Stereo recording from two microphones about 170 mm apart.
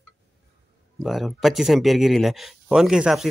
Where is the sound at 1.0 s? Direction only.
Centre (ahead or behind).